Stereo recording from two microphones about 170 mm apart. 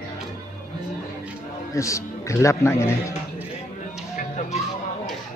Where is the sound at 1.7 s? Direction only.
20° left (ahead or behind).